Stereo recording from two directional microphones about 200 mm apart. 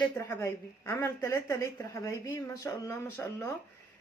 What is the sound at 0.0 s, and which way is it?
Speech, 15° left (ahead or behind).